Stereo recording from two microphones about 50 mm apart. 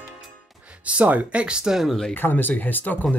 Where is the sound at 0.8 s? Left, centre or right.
Right.